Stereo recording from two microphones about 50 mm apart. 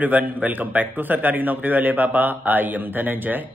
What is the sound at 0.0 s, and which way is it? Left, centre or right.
A man's voice, right.